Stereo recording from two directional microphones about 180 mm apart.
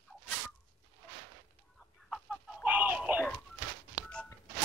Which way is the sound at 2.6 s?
5° right (ahead or behind).